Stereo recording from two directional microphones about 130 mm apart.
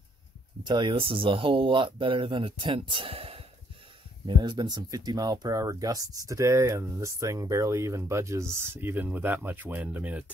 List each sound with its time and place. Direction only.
0.7 s speech: 40° right (ahead or behind)
4.3 s speech: 35° right (ahead or behind); by 10.3 s 10° right (ahead or behind)